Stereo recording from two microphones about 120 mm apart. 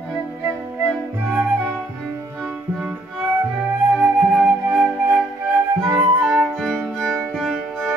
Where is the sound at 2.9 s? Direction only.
5° right (ahead or behind).